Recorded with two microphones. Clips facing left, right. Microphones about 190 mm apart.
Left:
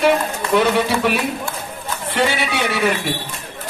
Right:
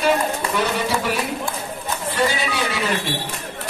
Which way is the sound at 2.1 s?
70° left (ahead or behind).